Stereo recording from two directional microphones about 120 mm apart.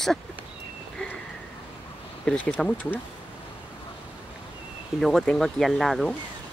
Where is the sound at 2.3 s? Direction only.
10° left (ahead or behind).